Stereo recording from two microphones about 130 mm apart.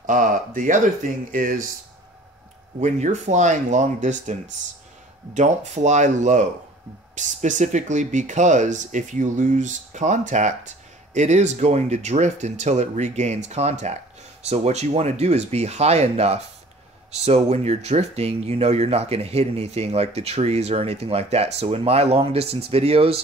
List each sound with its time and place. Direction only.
0.0 s speech: 90° right
2.8 s speech: 65° right (ahead or behind); by 23.2 s 50° right (ahead or behind)